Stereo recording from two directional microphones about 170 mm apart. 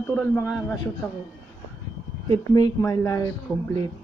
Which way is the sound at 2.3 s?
20° left (ahead or behind).